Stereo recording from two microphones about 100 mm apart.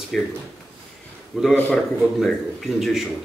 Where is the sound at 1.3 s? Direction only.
5° right (ahead or behind).